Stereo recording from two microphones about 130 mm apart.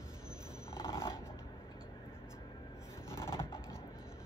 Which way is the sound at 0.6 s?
20° left (ahead or behind).